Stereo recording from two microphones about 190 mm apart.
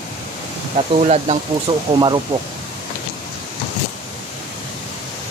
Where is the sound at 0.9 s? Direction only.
35° right (ahead or behind).